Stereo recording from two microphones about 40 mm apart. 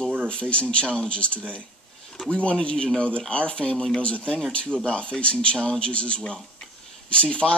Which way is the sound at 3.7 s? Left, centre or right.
Centre.